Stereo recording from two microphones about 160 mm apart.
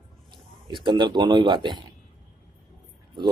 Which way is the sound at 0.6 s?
30° right (ahead or behind).